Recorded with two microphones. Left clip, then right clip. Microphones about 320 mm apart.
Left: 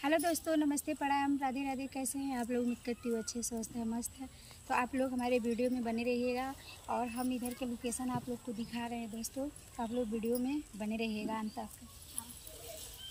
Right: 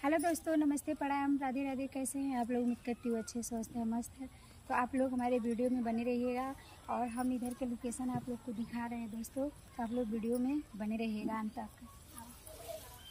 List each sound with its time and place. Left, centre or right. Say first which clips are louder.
0.0 s speech: left 1 dB; centre